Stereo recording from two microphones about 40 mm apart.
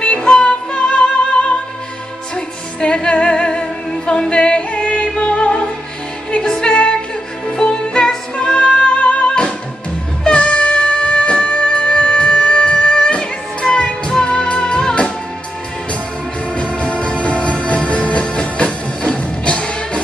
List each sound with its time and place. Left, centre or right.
0.3 s music: left
6.7 s music: left
7.6 s music: centre
16.7 s music: left